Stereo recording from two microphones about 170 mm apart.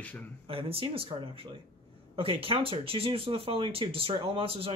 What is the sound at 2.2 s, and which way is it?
Speech, 35° right (ahead or behind).